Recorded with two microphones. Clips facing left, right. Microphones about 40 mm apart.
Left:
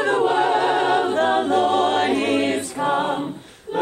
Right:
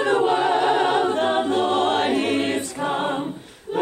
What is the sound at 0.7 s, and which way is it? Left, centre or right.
A capella, right.